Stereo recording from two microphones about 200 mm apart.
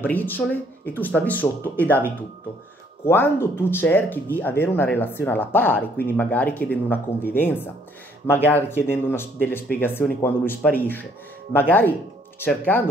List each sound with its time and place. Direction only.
0.0 s speech: 10° left (ahead or behind)